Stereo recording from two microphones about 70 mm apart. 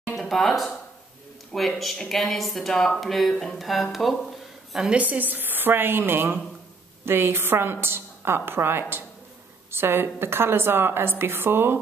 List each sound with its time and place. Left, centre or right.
0.1 s speech: centre
1.8 s speech: centre
4.7 s a woman's voice: centre
5.0 s a woman's voice: right